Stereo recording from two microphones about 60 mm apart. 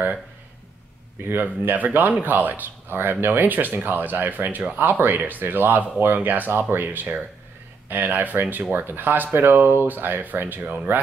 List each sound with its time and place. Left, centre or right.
1.3 s speech: right